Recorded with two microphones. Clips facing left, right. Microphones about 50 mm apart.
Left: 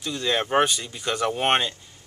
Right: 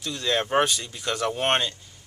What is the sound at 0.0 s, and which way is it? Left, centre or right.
Speech, centre.